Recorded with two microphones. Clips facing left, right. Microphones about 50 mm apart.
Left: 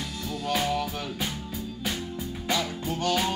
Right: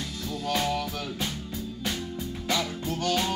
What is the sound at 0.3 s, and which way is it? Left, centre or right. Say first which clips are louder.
Music: left 1 dB; centre.